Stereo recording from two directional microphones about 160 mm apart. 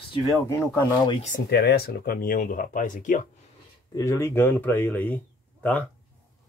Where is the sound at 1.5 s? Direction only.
90° left; by 3.2 s 55° left (ahead or behind).